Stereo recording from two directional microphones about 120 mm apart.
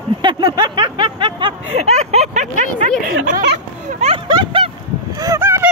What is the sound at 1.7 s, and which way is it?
Speech, 65° right (ahead or behind).